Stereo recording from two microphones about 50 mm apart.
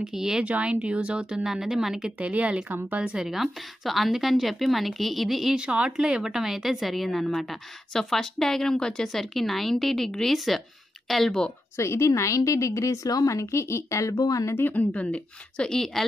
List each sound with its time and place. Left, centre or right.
0.0 s a woman's voice: centre
0.4 s speech: right
1.4 s a woman's voice: centre
2.1 s speech: right
3.2 s speech: centre
5.7 s a woman's voice: right; by 11.3 s centre
11.7 s a woman's voice: left
14.6 s a woman's voice: left
15.7 s a woman's voice: centre